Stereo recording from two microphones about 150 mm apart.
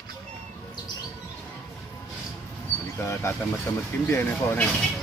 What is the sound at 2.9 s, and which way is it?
Speech, 20° left (ahead or behind).